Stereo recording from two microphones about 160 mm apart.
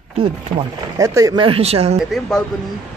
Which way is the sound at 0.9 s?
20° right (ahead or behind).